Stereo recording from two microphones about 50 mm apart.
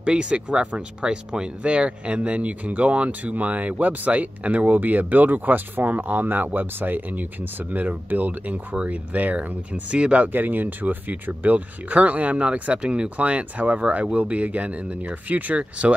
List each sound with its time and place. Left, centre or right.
0.0 s speech: right
10.3 s speech: right